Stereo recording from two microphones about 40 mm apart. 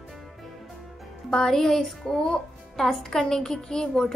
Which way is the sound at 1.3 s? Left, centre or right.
Centre.